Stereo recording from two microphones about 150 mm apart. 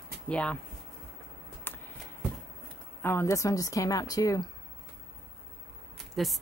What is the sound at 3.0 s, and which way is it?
A woman's voice, 15° left (ahead or behind).